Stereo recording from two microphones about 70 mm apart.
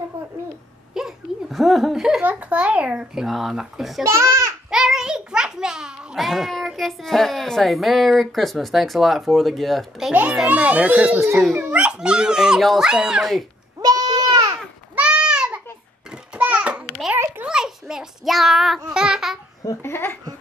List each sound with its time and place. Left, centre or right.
0.9 s a sound: centre
2.2 s a child's voice: centre
3.3 s speech: centre
4.0 s a child's voice: right
4.6 s a child's voice: centre
10.3 s a child's voice: centre
13.7 s goat: right
15.0 s goat: centre
16.3 s a sound: centre
17.5 s child singing: centre
18.9 s a child's voice: centre
19.8 s speech: left